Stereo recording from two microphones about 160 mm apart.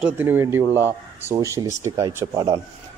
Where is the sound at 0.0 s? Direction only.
10° right (ahead or behind).